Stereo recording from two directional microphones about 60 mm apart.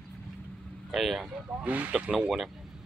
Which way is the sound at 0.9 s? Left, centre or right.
Centre.